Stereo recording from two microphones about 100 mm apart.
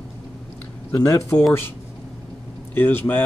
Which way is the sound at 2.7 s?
20° left (ahead or behind).